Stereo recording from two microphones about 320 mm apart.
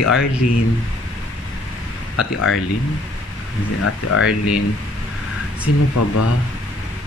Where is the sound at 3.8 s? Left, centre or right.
Left.